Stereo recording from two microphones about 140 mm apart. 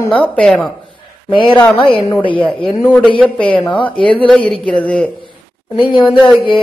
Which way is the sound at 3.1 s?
10° left (ahead or behind).